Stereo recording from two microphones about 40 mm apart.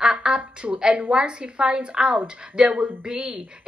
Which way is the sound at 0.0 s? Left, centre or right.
Right.